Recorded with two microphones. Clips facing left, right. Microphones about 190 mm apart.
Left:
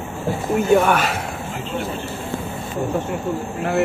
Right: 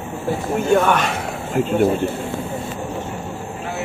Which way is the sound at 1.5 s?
50° right (ahead or behind).